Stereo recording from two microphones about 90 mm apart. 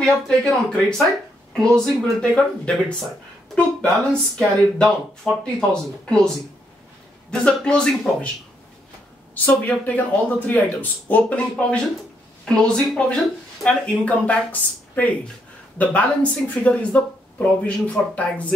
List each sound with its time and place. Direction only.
0.0 s speech: 10° left (ahead or behind)
4.1 s speech: 5° left (ahead or behind)
9.3 s speech: 15° left (ahead or behind)